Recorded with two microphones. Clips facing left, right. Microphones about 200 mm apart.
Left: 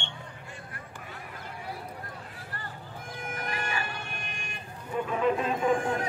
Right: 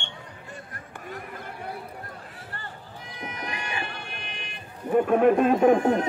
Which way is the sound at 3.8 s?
45° left (ahead or behind).